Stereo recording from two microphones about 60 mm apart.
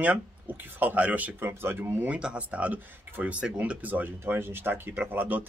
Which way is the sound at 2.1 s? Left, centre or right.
Centre.